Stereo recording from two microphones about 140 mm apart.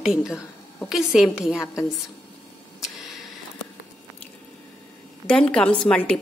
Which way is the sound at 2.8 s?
Centre (ahead or behind).